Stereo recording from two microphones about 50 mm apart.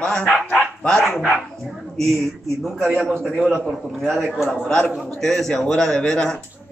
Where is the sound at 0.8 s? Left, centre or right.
Centre.